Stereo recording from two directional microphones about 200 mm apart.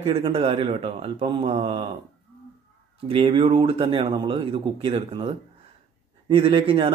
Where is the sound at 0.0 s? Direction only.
30° right (ahead or behind).